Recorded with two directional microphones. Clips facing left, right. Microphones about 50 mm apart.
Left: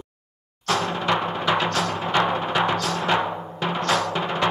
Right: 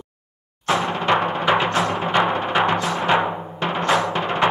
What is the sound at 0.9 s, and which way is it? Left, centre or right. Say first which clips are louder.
Music: right 4 dB; right.